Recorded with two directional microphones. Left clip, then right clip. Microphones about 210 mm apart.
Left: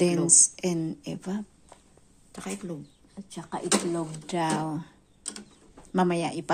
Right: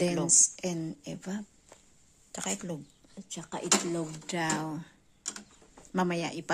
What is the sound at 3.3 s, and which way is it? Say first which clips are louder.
Speech: left 2 dB; 10° right (ahead or behind).